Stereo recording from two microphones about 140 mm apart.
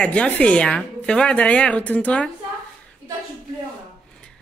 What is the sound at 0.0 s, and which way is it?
A woman's voice, 10° left (ahead or behind).